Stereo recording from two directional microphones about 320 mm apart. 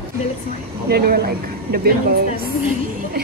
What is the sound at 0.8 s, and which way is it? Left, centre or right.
Speech, right.